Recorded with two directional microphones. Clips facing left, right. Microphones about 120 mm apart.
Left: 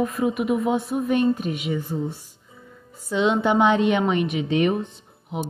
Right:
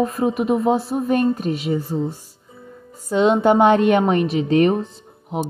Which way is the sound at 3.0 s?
45° right (ahead or behind).